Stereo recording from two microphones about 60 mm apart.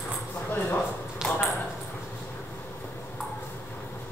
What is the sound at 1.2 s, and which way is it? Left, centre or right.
Ping, centre.